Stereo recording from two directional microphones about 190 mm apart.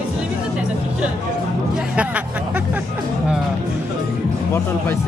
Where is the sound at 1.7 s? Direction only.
5° right (ahead or behind).